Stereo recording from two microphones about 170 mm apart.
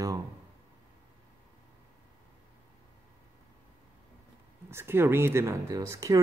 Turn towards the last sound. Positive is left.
turn(degrees=-20)  # may be behind; listen again after turning